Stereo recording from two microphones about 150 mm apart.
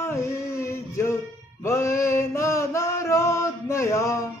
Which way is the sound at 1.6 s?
20° left (ahead or behind).